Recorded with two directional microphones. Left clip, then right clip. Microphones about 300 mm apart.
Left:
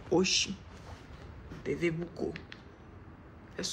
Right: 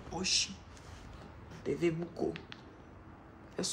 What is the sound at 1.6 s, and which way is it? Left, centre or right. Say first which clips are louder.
Speech: left 1 dB; centre.